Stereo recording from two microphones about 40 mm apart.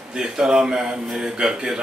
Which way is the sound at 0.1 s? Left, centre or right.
Centre.